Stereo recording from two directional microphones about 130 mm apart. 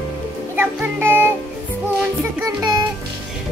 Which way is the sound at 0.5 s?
15° right (ahead or behind).